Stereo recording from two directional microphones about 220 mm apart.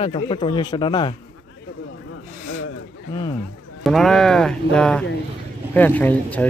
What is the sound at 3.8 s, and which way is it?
Speech, centre (ahead or behind).